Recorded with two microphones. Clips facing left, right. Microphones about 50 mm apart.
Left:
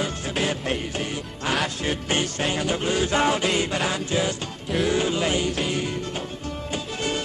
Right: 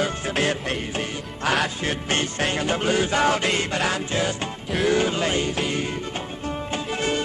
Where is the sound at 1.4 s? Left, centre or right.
Centre.